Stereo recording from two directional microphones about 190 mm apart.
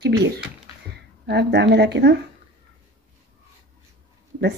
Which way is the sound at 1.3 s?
60° right (ahead or behind).